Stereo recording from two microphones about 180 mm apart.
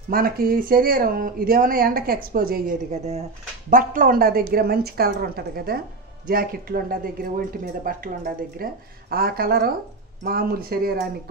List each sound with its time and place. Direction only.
0.1 s a woman's voice: 55° right (ahead or behind)